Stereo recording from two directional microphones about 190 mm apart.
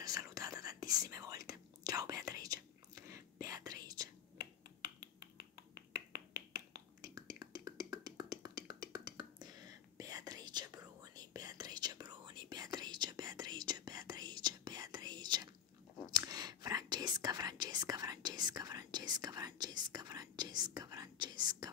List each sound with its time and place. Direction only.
0.0 s whispering: 20° right (ahead or behind)